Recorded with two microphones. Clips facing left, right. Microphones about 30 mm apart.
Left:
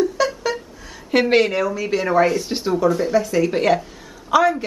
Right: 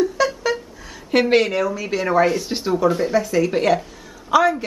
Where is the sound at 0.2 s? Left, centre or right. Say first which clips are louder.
Right 2 dB; centre.